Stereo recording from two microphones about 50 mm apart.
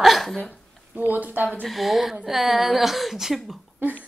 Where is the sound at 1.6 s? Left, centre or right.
Centre.